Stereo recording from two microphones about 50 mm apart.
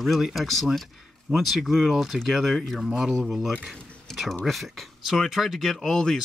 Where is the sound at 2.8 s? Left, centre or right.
Centre.